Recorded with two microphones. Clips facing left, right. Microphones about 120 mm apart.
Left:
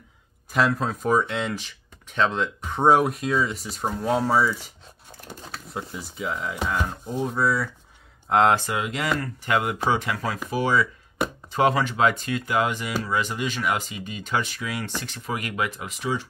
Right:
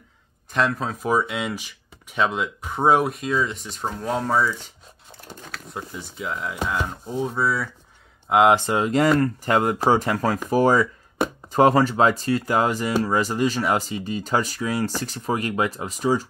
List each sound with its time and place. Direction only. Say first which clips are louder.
0.5 s speech: even; centre (ahead or behind)
5.7 s speech: left 1 dB; centre (ahead or behind)
8.5 s speech: right 7 dB; 30° right (ahead or behind)